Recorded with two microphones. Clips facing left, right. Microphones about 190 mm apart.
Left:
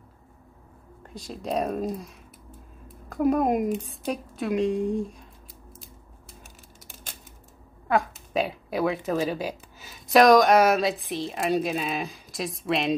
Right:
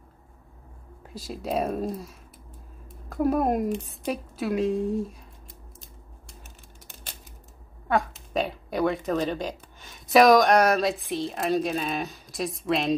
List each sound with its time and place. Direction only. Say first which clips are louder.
1.0 s speech: right 1 dB; 5° right (ahead or behind)
7.9 s speech: left 1 dB; centre (ahead or behind)